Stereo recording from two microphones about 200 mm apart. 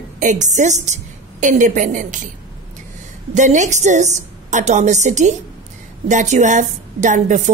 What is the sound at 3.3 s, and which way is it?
A woman's voice, 35° right (ahead or behind).